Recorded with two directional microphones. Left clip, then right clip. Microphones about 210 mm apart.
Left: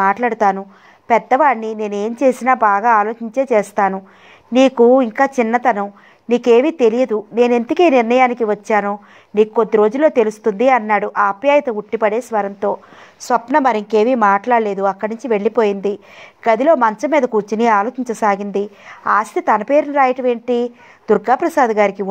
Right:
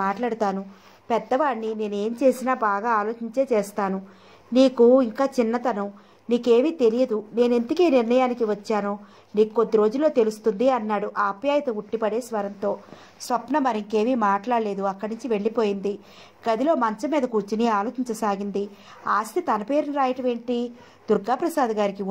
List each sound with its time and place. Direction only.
0.0 s a woman's voice: 30° left (ahead or behind)
8.4 s a woman's voice: 30° left (ahead or behind)